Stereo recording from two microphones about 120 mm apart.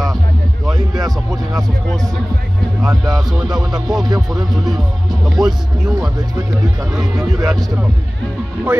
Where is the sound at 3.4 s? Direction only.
35° right (ahead or behind).